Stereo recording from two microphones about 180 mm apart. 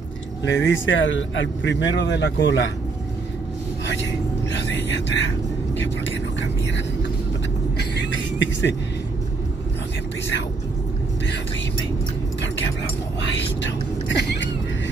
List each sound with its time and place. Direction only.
0.5 s speech: 85° left
2.0 s speech: 75° left (ahead or behind)
3.8 s a sound: 80° left
7.7 s vehicle: 80° left
13.2 s whispering: 90° left